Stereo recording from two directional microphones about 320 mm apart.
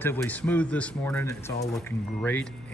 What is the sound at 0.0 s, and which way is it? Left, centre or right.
A man's voice, centre.